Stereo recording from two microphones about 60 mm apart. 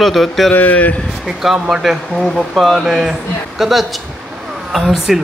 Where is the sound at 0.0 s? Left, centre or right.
Centre.